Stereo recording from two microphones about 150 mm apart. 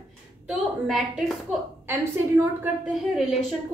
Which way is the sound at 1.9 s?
15° right (ahead or behind).